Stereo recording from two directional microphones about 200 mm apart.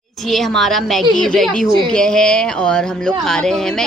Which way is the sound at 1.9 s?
5° left (ahead or behind).